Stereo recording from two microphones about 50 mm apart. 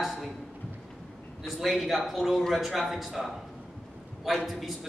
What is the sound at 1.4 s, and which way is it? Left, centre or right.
A man's voice, centre.